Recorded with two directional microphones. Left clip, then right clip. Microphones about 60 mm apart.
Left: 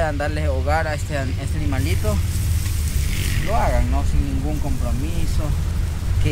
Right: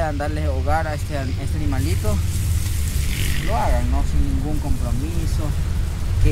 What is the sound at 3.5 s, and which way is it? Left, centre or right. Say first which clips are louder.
Speech: left 2 dB; left.